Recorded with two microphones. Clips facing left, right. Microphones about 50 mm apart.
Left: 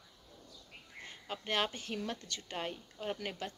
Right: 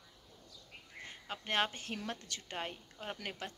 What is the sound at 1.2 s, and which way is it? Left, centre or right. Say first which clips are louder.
Speech: even; right.